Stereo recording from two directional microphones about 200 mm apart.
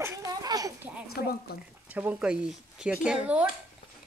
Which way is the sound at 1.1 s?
50° left (ahead or behind).